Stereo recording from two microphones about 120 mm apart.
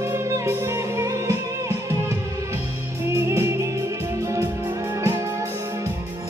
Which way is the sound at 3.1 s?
25° right (ahead or behind).